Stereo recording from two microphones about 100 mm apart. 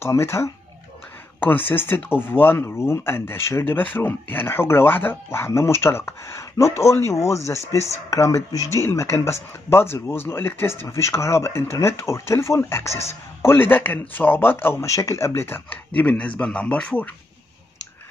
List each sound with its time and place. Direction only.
0.0 s a man's voice: 25° left (ahead or behind)